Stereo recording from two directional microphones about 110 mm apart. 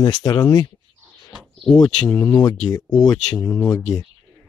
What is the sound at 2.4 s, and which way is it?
Speech, 35° left (ahead or behind).